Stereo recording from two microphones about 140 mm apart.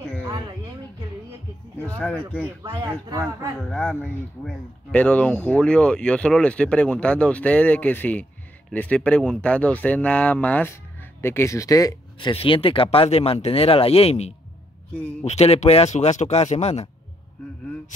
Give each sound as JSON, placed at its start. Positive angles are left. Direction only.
{"t": 1.9, "sound": "speech", "side_deg": 10}
{"t": 2.6, "sound": "speech", "side_deg": -25}
{"t": 3.5, "sound": "speech", "side_deg": 0}